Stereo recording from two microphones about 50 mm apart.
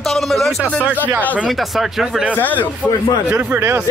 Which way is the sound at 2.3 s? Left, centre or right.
Left.